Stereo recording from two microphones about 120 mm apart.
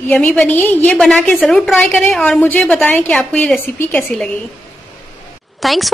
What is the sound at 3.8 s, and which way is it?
Speech, 20° left (ahead or behind).